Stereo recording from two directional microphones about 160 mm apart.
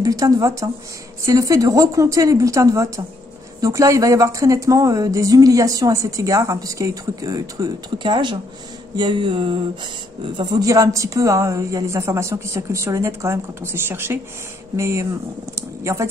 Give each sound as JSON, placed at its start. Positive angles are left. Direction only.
{"t": 0.0, "sound": "speech", "side_deg": -20}